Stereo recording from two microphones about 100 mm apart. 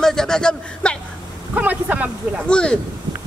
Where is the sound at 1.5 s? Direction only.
15° right (ahead or behind).